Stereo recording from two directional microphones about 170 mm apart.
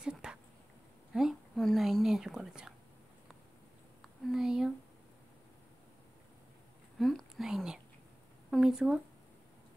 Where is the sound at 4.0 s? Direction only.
Centre (ahead or behind).